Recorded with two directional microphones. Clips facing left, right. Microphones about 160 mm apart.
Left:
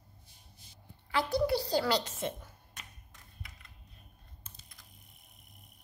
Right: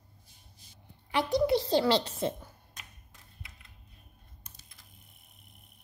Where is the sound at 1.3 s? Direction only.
20° right (ahead or behind).